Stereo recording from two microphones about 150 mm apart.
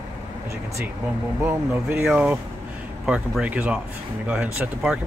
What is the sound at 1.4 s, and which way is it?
Speech, 15° right (ahead or behind).